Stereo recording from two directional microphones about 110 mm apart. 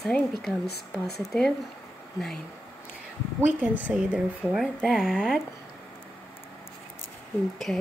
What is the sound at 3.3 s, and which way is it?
A woman's voice, 15° right (ahead or behind).